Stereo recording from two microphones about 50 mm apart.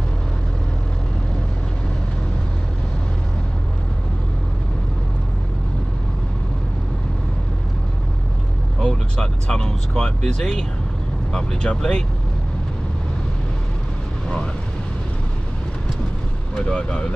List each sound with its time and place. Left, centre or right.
8.7 s speech: centre
16.5 s speech: centre